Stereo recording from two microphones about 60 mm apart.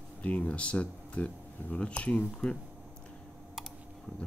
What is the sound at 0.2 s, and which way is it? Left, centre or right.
Speech, left.